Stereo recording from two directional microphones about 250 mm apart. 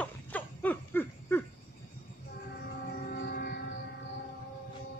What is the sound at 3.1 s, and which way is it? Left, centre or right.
Music, left.